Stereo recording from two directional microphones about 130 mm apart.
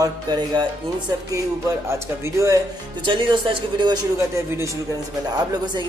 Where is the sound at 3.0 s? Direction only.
40° right (ahead or behind).